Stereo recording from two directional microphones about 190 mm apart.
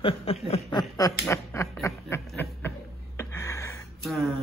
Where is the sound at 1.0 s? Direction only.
15° left (ahead or behind).